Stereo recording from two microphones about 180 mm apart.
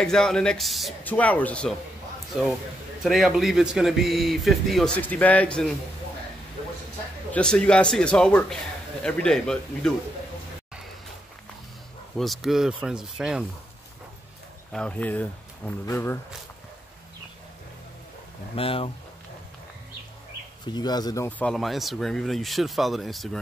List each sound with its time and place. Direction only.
0.0 s speech: 5° left (ahead or behind)
3.0 s speech: centre (ahead or behind)
7.3 s speech: 5° left (ahead or behind)
12.2 s speech: centre (ahead or behind)
14.7 s speech: 5° left (ahead or behind)
18.6 s speech: 30° left (ahead or behind)
20.6 s speech: 25° left (ahead or behind); by 23.4 s centre (ahead or behind)